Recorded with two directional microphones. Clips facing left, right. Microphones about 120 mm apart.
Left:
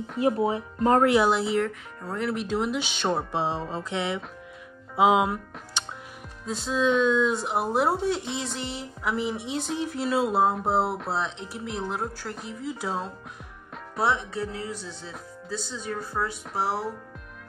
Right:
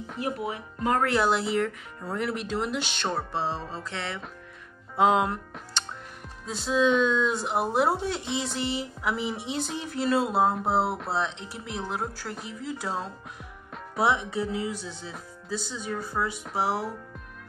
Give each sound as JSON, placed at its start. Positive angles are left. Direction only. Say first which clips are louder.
{"t": 0.2, "sound": "speech", "louder": "left 8 dB", "side_deg": 30}
{"t": 1.0, "sound": "speech", "louder": "left 3 dB", "side_deg": 10}
{"t": 3.2, "sound": "music", "louder": "left 2 dB", "side_deg": 15}
{"t": 4.9, "sound": "speech", "louder": "left 2 dB", "side_deg": 5}